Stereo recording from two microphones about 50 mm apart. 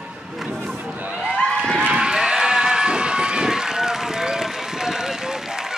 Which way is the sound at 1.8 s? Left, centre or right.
Right.